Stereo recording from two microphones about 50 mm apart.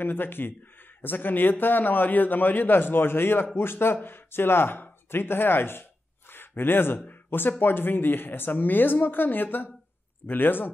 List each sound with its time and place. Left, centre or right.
0.0 s a man's voice: left